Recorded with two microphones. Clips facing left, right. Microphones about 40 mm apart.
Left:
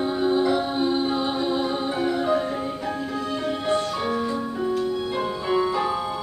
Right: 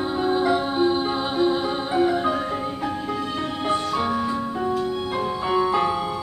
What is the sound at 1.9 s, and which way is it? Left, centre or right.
Marimba, centre.